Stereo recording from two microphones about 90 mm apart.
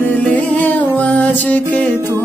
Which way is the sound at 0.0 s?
15° left (ahead or behind).